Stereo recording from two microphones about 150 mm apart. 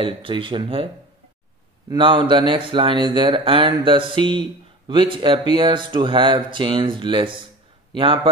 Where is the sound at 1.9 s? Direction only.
35° right (ahead or behind).